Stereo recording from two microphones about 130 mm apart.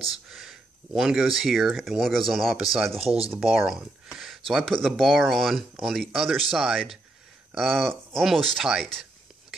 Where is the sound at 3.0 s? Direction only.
50° right (ahead or behind).